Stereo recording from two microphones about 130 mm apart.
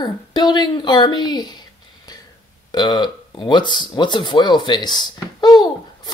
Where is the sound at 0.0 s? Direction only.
35° left (ahead or behind).